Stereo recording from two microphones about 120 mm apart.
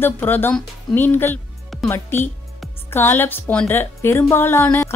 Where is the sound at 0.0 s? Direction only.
15° left (ahead or behind).